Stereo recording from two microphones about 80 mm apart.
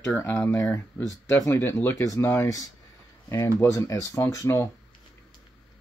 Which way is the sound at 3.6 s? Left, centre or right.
Left.